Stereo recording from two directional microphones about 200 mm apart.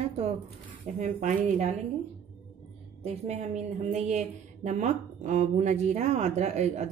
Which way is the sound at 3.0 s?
35° right (ahead or behind).